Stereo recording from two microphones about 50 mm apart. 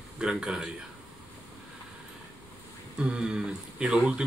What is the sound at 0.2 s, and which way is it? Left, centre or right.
Speech, centre.